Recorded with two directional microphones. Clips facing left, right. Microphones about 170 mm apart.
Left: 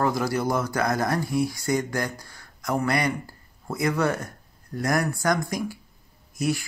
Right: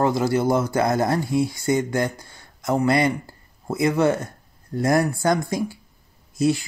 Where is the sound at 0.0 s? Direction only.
25° right (ahead or behind).